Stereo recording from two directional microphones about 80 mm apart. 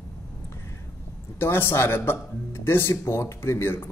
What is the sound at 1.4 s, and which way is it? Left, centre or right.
Speech, left.